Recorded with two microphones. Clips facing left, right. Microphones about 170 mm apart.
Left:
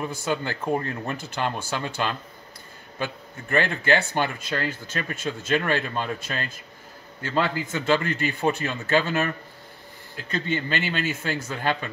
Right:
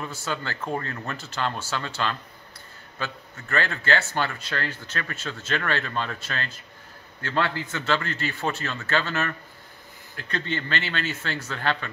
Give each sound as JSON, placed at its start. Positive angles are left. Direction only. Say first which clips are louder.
{"t": 0.0, "sound": "speech", "louder": "left 4 dB", "side_deg": 15}